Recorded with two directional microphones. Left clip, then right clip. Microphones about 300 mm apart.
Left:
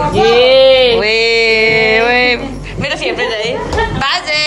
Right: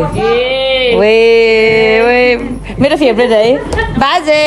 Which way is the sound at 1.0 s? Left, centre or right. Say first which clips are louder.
Right 4 dB; centre.